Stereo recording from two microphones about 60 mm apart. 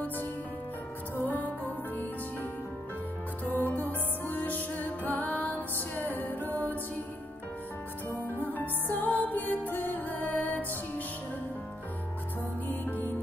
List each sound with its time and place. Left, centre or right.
1.1 s music: left
3.4 s music: left
8.1 s music: right
8.5 s music: left
12.6 s music: left